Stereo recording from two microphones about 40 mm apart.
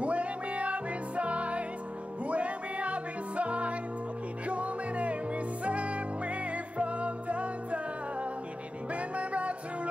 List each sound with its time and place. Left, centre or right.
0.0 s music: right